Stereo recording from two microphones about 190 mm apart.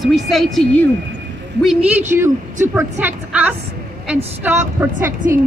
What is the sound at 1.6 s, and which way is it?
A man's voice, 5° right (ahead or behind).